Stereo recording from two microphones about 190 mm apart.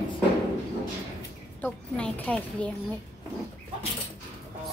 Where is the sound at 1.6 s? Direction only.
5° left (ahead or behind).